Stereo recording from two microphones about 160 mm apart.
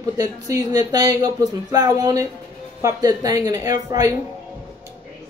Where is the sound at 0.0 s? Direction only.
20° right (ahead or behind).